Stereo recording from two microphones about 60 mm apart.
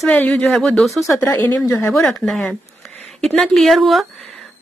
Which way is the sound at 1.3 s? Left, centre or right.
Left.